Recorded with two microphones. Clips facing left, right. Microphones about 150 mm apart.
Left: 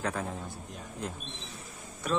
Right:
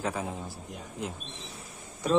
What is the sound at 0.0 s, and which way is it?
Speech, 5° right (ahead or behind).